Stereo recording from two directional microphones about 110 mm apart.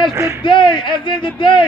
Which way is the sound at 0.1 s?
30° right (ahead or behind).